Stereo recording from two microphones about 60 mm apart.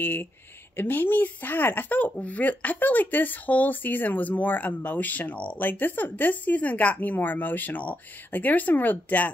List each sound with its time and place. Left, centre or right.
0.0 s speech: left